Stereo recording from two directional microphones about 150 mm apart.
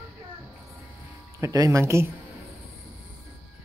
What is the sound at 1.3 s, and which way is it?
Speech, 25° right (ahead or behind).